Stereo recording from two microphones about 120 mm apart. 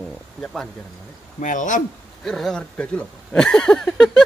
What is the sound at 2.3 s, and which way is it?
Speech, 5° left (ahead or behind).